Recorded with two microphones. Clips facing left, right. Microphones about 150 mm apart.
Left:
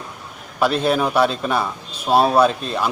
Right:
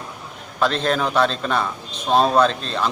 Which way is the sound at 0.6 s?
10° left (ahead or behind).